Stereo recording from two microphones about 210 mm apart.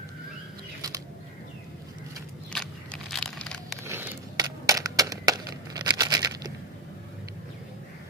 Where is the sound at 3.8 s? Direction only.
10° right (ahead or behind).